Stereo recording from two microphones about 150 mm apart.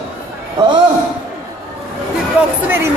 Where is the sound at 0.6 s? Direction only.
25° right (ahead or behind).